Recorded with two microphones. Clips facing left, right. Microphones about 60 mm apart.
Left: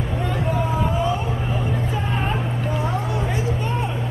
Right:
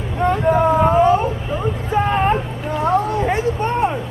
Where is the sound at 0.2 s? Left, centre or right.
Right.